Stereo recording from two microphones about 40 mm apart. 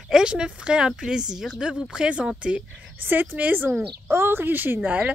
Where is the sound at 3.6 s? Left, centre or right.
Right.